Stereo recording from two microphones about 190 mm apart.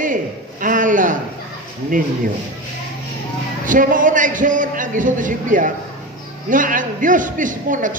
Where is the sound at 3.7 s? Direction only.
45° right (ahead or behind).